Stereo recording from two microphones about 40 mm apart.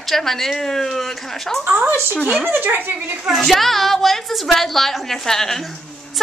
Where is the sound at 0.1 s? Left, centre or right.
Centre.